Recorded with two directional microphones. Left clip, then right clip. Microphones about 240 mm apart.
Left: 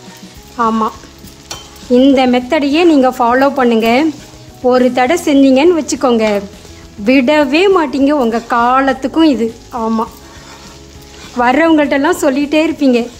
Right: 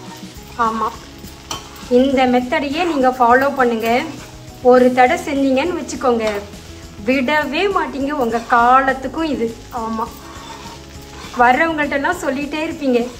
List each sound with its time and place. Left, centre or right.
2.0 s a woman's voice: left
11.4 s a woman's voice: left